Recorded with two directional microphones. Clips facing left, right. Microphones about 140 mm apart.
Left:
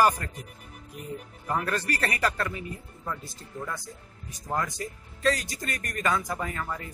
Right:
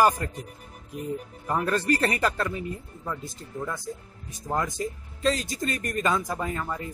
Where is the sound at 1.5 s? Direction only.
25° right (ahead or behind).